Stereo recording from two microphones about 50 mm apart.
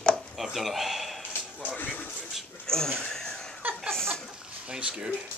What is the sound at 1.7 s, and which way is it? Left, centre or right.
Speech, left.